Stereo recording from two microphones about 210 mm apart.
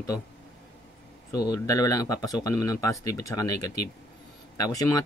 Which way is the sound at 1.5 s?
15° left (ahead or behind).